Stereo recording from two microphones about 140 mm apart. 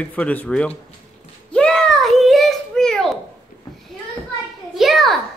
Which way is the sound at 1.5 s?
5° left (ahead or behind).